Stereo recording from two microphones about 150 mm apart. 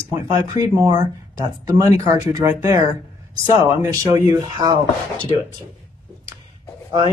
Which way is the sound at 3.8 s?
20° right (ahead or behind).